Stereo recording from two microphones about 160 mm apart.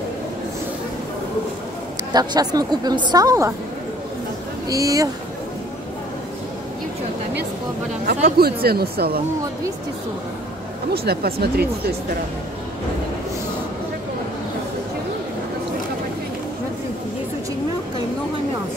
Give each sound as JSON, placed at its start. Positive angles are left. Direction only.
{"t": 2.1, "sound": "a woman's voice", "side_deg": -25}
{"t": 4.6, "sound": "a woman's voice", "side_deg": -20}
{"t": 8.4, "sound": "speech", "side_deg": -75}
{"t": 10.9, "sound": "speech", "side_deg": -75}